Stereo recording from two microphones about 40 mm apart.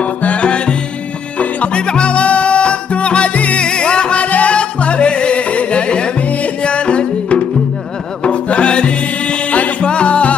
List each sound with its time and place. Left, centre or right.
0.0 s music: left
1.7 s music: left